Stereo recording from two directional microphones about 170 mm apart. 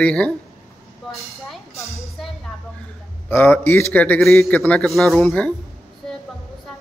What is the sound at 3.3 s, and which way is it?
Speech, 10° left (ahead or behind).